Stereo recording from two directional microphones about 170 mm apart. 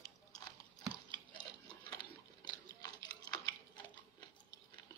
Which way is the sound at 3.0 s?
25° left (ahead or behind).